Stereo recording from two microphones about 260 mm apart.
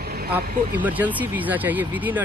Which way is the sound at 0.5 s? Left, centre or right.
Right.